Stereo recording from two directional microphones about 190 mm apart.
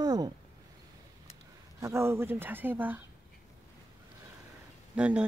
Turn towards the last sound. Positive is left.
turn(degrees=-5)  # may be behind; listen again after turning